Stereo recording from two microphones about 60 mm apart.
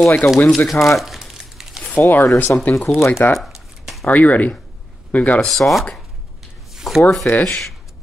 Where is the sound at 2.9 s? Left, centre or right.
Left.